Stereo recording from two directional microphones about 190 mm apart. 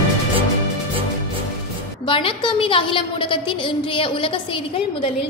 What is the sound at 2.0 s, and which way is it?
A woman's voice, 25° left (ahead or behind).